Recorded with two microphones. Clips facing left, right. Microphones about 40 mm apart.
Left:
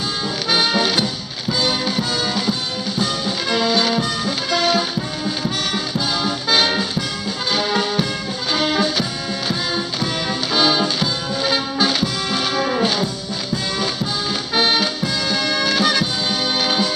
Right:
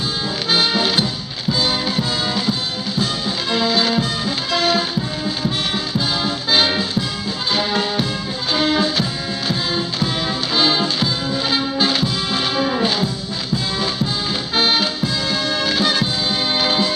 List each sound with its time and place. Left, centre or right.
0.5 s music: centre
14.5 s music: centre